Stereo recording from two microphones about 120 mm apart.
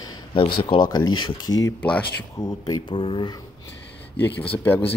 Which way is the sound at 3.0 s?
45° left (ahead or behind).